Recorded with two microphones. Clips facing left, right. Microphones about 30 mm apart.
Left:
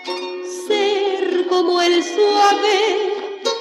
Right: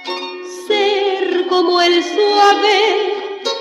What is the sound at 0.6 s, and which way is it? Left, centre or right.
Music, right.